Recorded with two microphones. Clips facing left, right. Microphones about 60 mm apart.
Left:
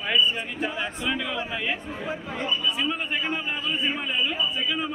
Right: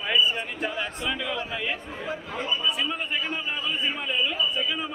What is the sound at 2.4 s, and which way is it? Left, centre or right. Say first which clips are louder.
Speech: even; centre.